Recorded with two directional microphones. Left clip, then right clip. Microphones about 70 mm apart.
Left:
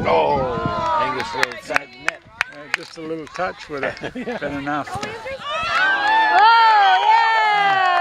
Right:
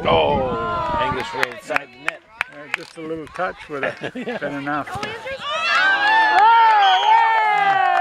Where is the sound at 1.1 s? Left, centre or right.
Right.